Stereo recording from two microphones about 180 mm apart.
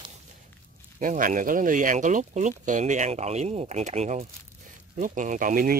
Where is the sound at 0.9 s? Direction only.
45° right (ahead or behind).